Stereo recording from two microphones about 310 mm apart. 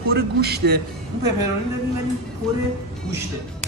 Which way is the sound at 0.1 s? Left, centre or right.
Right.